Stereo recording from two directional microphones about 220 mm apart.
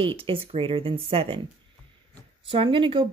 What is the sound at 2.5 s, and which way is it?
Speech, 20° right (ahead or behind).